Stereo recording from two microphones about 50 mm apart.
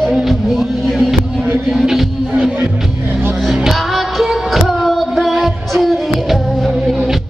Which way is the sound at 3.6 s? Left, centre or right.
Centre.